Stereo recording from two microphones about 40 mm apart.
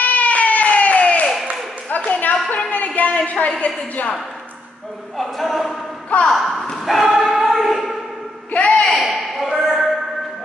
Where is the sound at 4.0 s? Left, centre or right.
Left.